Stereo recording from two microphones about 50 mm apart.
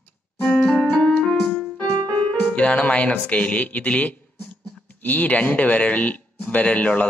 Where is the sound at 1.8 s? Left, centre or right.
Left.